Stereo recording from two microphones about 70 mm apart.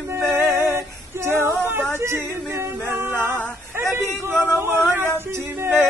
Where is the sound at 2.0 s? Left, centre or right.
Right.